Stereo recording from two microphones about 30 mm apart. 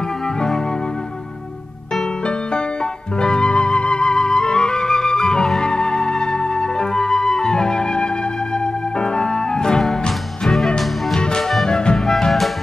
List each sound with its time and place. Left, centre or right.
3.2 s flute: left
9.0 s organ: left
11.1 s music: left